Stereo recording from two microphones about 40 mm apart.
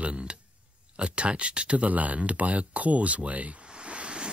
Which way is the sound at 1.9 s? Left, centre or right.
Right.